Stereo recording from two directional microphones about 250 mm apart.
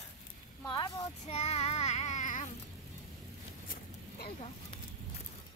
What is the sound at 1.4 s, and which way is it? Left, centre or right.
Child singing, left.